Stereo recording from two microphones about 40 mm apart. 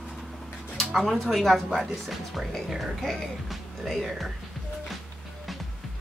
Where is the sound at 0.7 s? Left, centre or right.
Centre.